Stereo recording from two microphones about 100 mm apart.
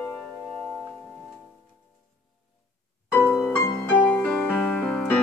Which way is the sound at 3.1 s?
20° left (ahead or behind).